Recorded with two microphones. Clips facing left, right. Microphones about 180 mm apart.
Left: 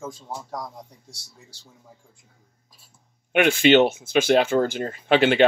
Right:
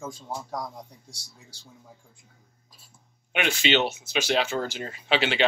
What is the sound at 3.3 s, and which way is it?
Speech, 55° left (ahead or behind).